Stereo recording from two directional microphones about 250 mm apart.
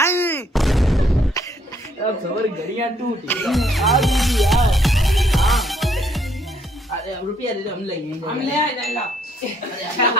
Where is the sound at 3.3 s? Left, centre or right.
Centre.